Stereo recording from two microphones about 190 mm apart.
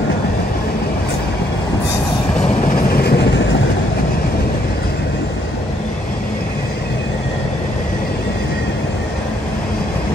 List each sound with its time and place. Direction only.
2.7 s train: 55° left (ahead or behind)